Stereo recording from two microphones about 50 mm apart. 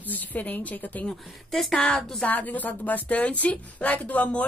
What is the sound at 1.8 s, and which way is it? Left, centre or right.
Speech, left.